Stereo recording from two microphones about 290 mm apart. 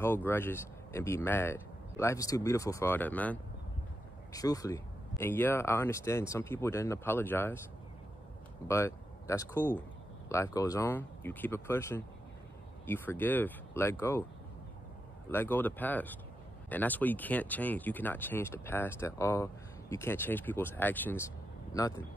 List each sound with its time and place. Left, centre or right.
0.0 s speech: centre
8.6 s speech: centre
15.3 s speech: centre